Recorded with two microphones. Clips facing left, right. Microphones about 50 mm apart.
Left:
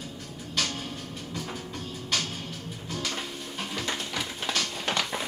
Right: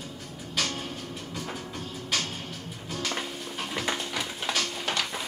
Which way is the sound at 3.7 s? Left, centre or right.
Centre.